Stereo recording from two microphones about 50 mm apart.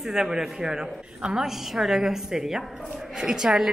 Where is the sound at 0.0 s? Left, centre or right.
Centre.